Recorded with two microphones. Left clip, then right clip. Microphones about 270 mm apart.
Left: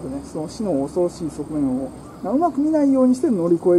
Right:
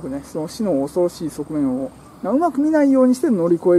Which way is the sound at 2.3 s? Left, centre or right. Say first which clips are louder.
Right 2 dB; centre.